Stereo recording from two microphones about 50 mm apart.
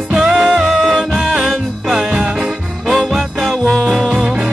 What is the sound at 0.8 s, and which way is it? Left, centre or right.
Music, centre.